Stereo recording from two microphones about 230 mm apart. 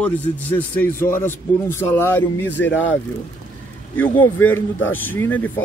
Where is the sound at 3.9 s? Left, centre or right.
Centre.